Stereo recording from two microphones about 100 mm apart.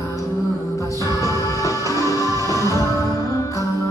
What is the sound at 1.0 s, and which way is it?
Music, 35° right (ahead or behind).